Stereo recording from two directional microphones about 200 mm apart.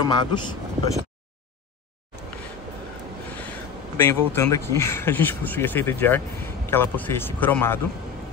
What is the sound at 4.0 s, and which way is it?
Speech, 10° left (ahead or behind).